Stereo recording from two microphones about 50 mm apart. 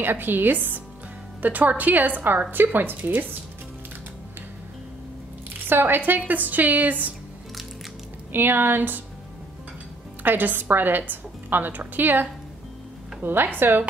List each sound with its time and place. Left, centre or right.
0.0 s a woman's voice: right
5.7 s a woman's voice: right
8.3 s speech: right
10.2 s a woman's voice: right